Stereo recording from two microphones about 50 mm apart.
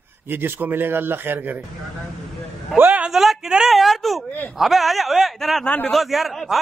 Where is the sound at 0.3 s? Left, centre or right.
Right.